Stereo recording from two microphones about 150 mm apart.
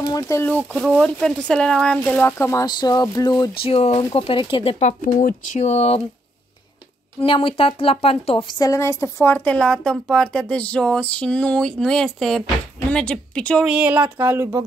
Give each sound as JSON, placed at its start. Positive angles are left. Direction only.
{"t": 0.0, "sound": "speech", "side_deg": 25}
{"t": 0.7, "sound": "speech", "side_deg": 0}
{"t": 2.6, "sound": "a sound", "side_deg": 25}
{"t": 3.6, "sound": "a woman's voice", "side_deg": 40}
{"t": 5.6, "sound": "speech", "side_deg": 45}
{"t": 7.2, "sound": "a woman's voice", "side_deg": 35}
{"t": 8.5, "sound": "a woman's voice", "side_deg": 20}
{"t": 13.7, "sound": "speech", "side_deg": -10}